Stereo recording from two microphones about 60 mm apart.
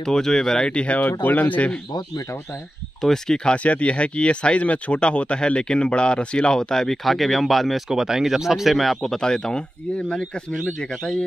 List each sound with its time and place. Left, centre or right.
0.0 s speech: centre; by 1.7 s left
3.0 s speech: centre
3.5 s speech: left